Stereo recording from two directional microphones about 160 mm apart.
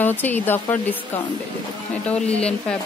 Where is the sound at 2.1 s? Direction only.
5° left (ahead or behind).